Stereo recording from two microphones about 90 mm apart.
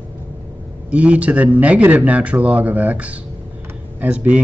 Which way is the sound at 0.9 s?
15° right (ahead or behind).